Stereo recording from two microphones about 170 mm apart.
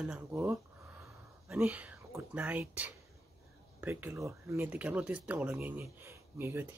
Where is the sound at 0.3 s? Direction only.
15° right (ahead or behind).